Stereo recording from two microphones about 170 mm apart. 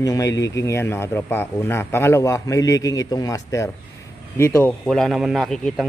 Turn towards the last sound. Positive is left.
turn(degrees=0)  # may be behind; listen again after turning